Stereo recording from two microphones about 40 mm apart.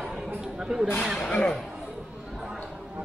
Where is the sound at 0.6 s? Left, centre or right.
Centre.